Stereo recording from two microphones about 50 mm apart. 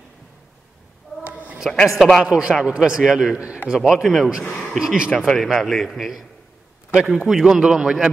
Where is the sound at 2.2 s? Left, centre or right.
Right.